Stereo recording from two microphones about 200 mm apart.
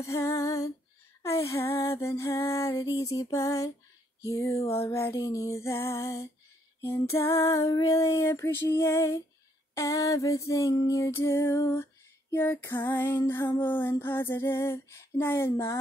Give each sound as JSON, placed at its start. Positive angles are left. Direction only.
{"t": 0.0, "sound": "female singing", "side_deg": 15}